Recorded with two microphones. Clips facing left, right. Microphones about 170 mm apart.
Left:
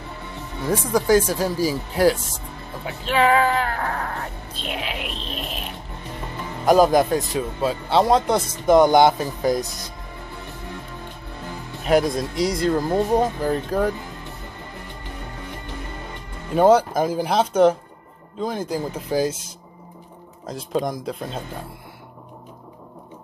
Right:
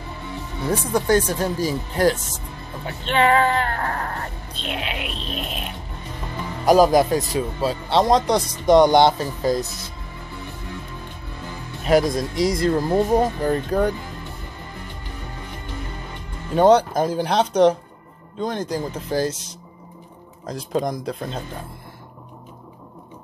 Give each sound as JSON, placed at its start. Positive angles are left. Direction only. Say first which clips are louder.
{"t": 0.7, "sound": "speech", "louder": "left 1 dB", "side_deg": 0}
{"t": 6.6, "sound": "speech", "louder": "right 1 dB", "side_deg": -40}
{"t": 7.3, "sound": "speech", "louder": "even", "side_deg": 0}
{"t": 11.8, "sound": "speech", "louder": "right 1 dB", "side_deg": 0}
{"t": 16.5, "sound": "speech", "louder": "even", "side_deg": 5}